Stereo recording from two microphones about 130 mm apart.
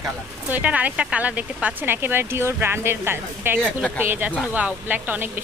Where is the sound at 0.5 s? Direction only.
10° right (ahead or behind).